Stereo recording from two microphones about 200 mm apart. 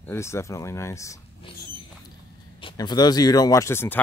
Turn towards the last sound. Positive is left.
turn(degrees=10)  # may be behind; listen again after turning